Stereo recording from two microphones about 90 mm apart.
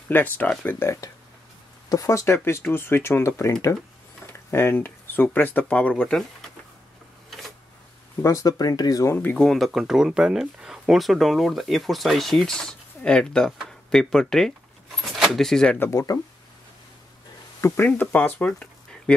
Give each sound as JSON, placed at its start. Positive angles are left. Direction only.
{"t": 0.1, "sound": "speech", "side_deg": 20}
{"t": 1.9, "sound": "speech", "side_deg": 40}
{"t": 7.2, "sound": "a sound", "side_deg": 0}
{"t": 8.2, "sound": "speech", "side_deg": 40}
{"t": 9.0, "sound": "speech", "side_deg": 25}
{"t": 9.4, "sound": "speech", "side_deg": 0}
{"t": 15.0, "sound": "a sound", "side_deg": 0}
{"t": 15.8, "sound": "speech", "side_deg": 30}
{"t": 17.6, "sound": "speech", "side_deg": 30}
{"t": 18.1, "sound": "speech", "side_deg": 15}